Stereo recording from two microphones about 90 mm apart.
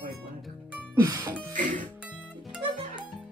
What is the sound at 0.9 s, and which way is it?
Music, 40° right (ahead or behind).